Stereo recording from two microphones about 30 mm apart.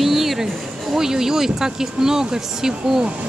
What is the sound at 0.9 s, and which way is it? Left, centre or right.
Speech, centre.